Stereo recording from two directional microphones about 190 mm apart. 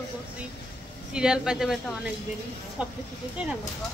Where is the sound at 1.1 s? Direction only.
5° right (ahead or behind).